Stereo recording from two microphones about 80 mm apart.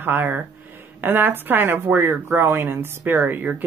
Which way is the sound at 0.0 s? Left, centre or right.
Right.